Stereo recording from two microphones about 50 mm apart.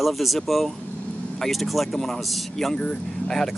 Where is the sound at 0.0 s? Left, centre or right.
Centre.